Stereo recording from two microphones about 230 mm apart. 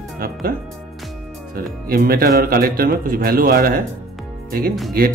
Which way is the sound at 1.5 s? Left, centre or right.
Right.